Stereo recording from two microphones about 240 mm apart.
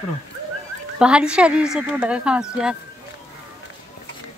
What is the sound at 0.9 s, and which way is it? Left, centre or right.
Speech, centre.